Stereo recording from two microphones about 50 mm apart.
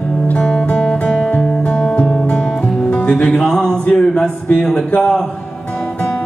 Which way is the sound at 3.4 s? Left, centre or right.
Centre.